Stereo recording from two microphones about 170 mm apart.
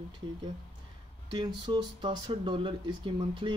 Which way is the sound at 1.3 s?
25° right (ahead or behind).